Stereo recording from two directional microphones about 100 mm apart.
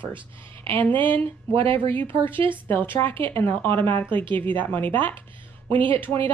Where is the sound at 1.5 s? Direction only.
65° right (ahead or behind).